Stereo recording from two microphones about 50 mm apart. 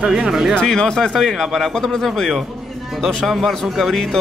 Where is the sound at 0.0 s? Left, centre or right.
Centre.